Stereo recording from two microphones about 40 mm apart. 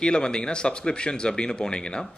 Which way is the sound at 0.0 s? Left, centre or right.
Left.